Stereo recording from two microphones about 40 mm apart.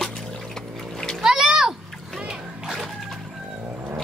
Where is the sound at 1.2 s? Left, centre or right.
Centre.